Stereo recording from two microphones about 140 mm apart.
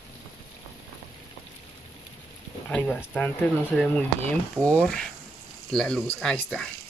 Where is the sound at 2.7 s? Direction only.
10° left (ahead or behind).